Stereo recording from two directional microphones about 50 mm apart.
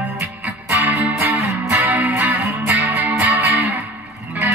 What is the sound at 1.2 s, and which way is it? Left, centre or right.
Music, right.